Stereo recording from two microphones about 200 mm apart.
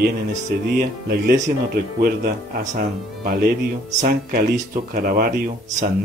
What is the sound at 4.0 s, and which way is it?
Speech, 45° right (ahead or behind).